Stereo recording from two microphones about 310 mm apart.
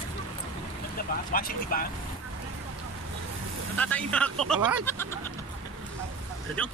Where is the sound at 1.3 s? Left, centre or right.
Left.